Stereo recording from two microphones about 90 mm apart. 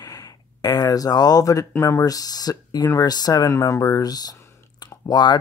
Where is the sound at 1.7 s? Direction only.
30° left (ahead or behind).